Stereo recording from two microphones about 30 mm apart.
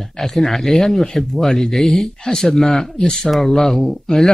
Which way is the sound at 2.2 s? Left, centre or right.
Centre.